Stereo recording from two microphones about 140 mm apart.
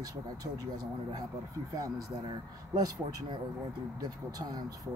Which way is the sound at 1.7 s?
25° right (ahead or behind).